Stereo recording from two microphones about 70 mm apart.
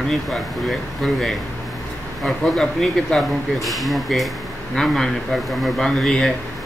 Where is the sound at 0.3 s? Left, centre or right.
Centre.